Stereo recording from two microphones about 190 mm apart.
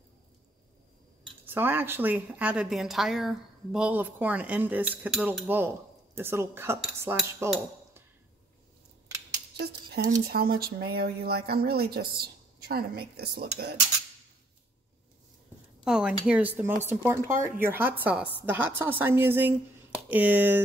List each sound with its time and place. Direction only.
1.4 s a woman's voice: 10° right (ahead or behind)
9.6 s speech: 55° right (ahead or behind)
15.8 s a woman's voice: 5° right (ahead or behind)